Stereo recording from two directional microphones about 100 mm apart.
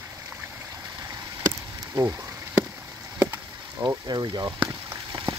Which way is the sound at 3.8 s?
45° right (ahead or behind).